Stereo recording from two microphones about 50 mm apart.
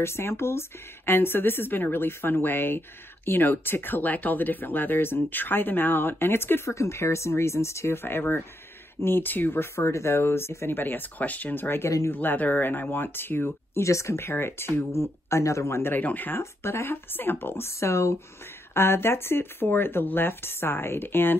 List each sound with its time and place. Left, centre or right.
0.0 s speech: left
6.7 s speech: left
10.7 s speech: left
13.8 s speech: left
14.9 s speech: left
15.9 s speech: left
16.3 s speech: left
16.9 s speech: left
18.7 s speech: left